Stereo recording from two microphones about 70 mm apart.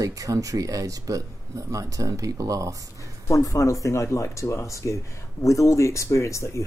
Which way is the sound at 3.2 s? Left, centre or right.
Left.